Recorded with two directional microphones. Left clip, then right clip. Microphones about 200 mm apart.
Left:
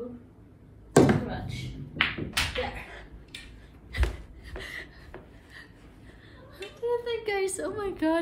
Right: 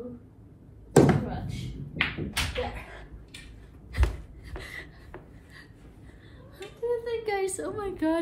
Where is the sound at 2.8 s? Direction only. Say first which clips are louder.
Left 1 dB; 20° right (ahead or behind).